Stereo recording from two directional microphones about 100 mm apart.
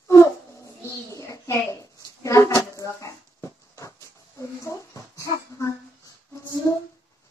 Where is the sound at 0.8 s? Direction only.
30° left (ahead or behind).